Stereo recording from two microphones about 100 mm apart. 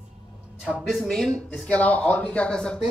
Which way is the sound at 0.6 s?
5° right (ahead or behind).